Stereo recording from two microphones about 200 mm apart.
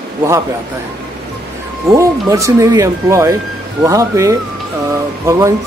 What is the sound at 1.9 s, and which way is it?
Speech, 15° right (ahead or behind).